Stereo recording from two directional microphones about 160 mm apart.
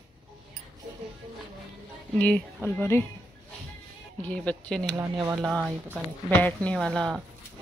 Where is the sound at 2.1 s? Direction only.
5° left (ahead or behind).